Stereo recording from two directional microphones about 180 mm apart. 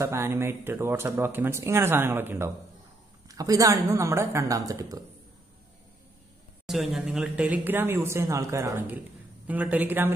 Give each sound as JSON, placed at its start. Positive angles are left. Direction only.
{"t": 0.0, "sound": "a woman's voice", "side_deg": -15}
{"t": 6.6, "sound": "speech", "side_deg": 0}